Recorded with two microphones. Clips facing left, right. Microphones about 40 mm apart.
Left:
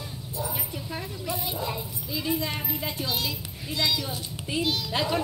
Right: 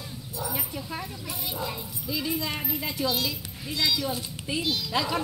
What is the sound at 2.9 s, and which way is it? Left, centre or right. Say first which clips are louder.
A child's voice: right 2 dB; left.